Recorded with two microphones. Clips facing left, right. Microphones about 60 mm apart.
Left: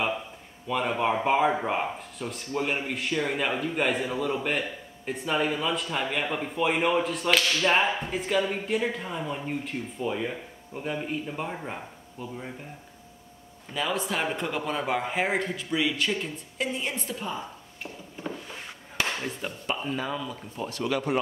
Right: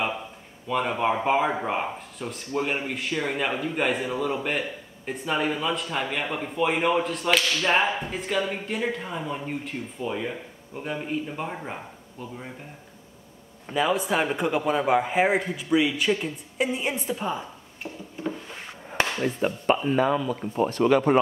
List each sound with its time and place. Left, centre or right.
0.7 s speech: centre
13.7 s a man's voice: centre
18.9 s speech: right